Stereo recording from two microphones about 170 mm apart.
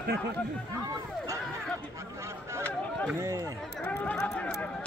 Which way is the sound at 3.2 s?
20° right (ahead or behind).